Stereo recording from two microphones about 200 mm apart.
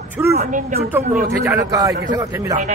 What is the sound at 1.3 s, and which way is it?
A man's voice, 15° right (ahead or behind).